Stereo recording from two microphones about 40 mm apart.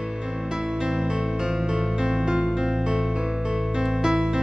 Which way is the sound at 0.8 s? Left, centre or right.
Centre.